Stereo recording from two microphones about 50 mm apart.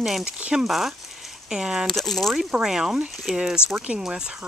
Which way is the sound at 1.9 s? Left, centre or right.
Centre.